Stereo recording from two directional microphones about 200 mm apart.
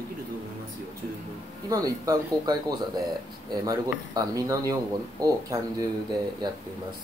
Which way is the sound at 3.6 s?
15° right (ahead or behind).